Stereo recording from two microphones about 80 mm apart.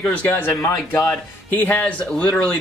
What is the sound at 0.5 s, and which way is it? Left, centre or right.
Speech, left.